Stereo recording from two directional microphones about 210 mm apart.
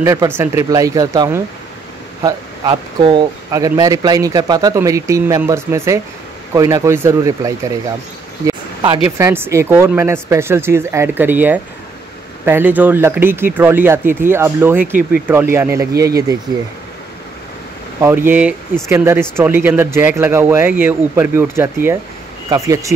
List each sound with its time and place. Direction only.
0.0 s speech: 15° right (ahead or behind)
8.5 s a sound: 20° right (ahead or behind)
9.0 s speech: 10° right (ahead or behind)
18.0 s speech: 10° right (ahead or behind)